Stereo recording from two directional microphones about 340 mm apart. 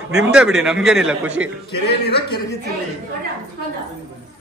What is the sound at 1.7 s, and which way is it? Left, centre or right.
Speech, left.